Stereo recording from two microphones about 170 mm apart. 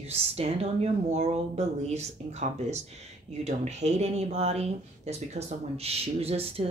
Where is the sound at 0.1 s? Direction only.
35° right (ahead or behind).